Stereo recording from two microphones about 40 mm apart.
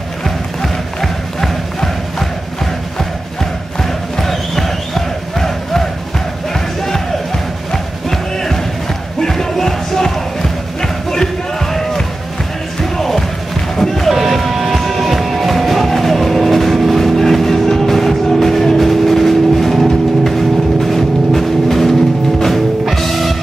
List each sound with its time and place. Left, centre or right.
0.6 s music: centre
3.8 s crowd: centre
6.5 s music: centre
20.8 s a sound: centre
22.4 s music: centre